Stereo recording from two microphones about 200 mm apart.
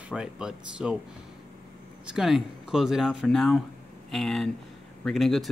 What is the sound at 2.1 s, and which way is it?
Speech, centre (ahead or behind).